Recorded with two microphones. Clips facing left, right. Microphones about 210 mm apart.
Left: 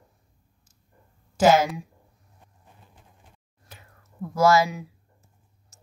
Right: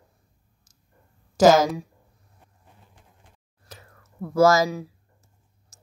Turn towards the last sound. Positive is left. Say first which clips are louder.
# right 1 dB
turn(degrees=-40)  # may be behind; listen again after turning